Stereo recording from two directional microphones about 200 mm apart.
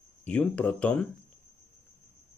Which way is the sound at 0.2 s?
5° left (ahead or behind).